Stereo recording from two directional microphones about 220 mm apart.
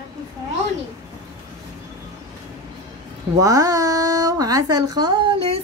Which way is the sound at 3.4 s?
15° right (ahead or behind).